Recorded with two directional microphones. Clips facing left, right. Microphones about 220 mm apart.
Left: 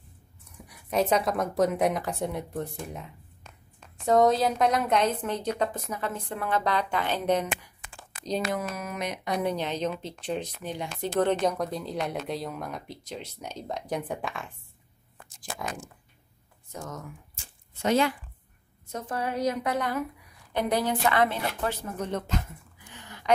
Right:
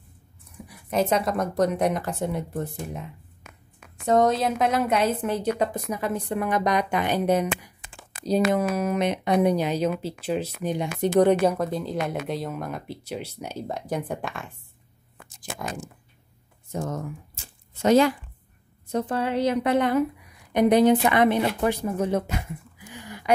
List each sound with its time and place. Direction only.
0.7 s a woman's voice: centre (ahead or behind)
7.8 s a sound: 35° right (ahead or behind)
8.7 s a woman's voice: 30° right (ahead or behind)
9.4 s a woman's voice: 10° right (ahead or behind)
16.7 s a woman's voice: 30° right (ahead or behind)
18.9 s a woman's voice: 30° right (ahead or behind); by 23.3 s 10° right (ahead or behind)